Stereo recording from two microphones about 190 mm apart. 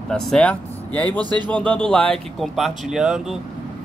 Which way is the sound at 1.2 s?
25° right (ahead or behind).